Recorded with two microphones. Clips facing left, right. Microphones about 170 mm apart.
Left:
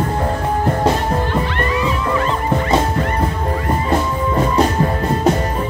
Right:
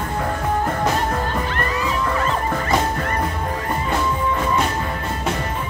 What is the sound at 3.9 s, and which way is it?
Music, 35° left (ahead or behind).